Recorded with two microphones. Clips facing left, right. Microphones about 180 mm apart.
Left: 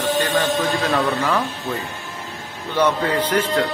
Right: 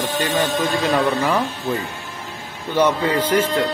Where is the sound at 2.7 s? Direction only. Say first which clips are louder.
Right 1 dB; 10° right (ahead or behind).